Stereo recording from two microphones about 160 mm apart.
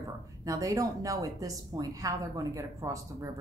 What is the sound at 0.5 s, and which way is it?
A woman's voice, 20° right (ahead or behind).